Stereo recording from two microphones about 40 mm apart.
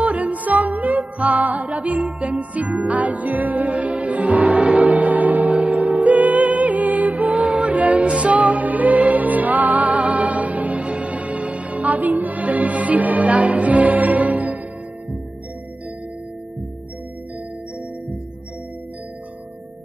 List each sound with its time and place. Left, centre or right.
0.0 s music: right